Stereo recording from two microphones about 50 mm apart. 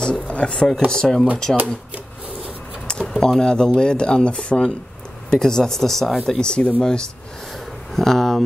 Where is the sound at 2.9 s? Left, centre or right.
Centre.